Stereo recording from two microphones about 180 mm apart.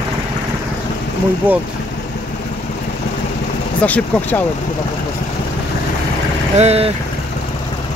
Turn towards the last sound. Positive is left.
turn(degrees=-35)  # may be behind; listen again after turning